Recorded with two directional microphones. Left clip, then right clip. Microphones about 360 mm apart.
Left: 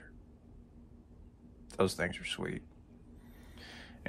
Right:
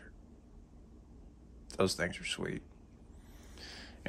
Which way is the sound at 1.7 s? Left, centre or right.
Centre.